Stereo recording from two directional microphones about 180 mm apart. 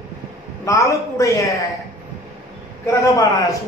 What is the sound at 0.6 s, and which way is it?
Speech, 15° left (ahead or behind).